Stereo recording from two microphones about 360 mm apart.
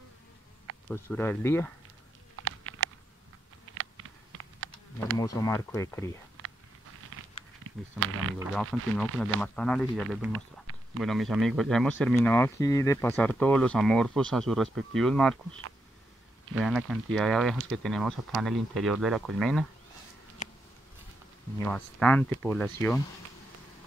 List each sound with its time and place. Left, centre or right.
0.8 s speech: centre
2.4 s a sound: right
4.4 s insect: right
5.1 s speech: centre
8.0 s speech: right
8.4 s speech: centre
16.5 s speech: centre
21.5 s speech: centre